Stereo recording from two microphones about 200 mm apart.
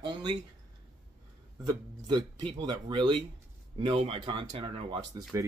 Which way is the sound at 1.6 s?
25° right (ahead or behind).